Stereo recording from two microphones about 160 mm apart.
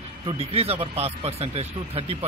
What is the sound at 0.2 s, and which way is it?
A man's voice, 35° right (ahead or behind).